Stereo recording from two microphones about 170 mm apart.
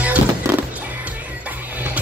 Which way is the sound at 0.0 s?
10° right (ahead or behind).